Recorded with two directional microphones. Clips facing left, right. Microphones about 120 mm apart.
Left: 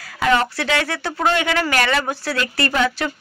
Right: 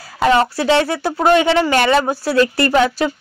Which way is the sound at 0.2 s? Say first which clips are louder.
Right 4 dB; 30° right (ahead or behind).